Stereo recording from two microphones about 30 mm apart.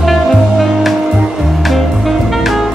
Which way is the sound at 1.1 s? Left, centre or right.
Centre.